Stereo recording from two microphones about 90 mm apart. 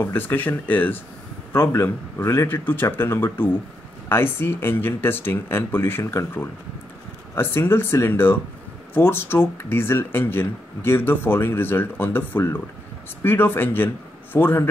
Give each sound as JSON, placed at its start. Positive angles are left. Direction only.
{"t": 0.0, "sound": "speech", "side_deg": 25}